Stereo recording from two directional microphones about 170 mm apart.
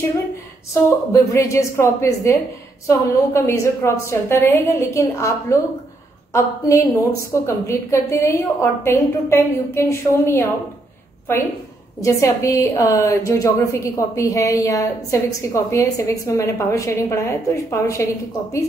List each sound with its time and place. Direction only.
0.8 s a woman's voice: 15° left (ahead or behind)
12.0 s a woman's voice: 20° left (ahead or behind)